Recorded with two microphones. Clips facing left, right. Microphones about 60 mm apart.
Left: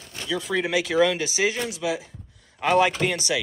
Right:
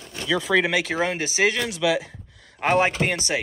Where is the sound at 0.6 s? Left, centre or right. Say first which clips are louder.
Right 1 dB; right.